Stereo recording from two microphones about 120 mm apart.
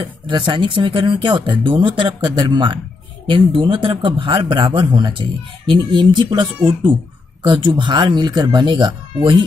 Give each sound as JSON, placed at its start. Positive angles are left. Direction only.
{"t": 0.3, "sound": "speech", "side_deg": -40}